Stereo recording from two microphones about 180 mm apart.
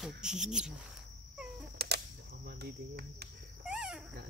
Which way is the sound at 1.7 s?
65° right (ahead or behind).